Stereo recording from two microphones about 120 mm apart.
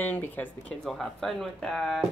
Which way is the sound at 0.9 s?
Centre (ahead or behind).